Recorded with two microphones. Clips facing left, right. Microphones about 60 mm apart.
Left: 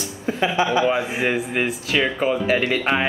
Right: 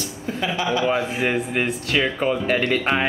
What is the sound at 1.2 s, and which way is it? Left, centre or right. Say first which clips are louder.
Speech: left 1 dB; centre.